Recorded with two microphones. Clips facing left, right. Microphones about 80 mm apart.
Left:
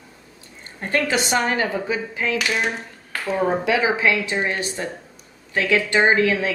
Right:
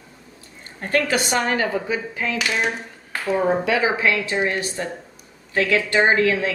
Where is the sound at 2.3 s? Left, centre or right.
Centre.